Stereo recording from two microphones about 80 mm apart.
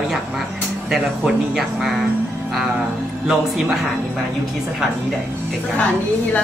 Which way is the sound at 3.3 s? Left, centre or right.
Centre.